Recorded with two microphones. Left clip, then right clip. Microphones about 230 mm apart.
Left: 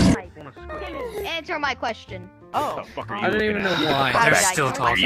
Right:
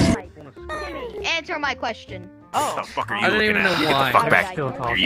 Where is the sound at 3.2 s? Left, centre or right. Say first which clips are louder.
Right 3 dB; right.